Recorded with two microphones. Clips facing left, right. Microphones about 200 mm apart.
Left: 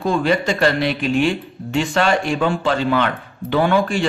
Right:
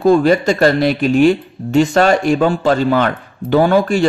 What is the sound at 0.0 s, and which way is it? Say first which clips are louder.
Speech: right 7 dB; 40° right (ahead or behind).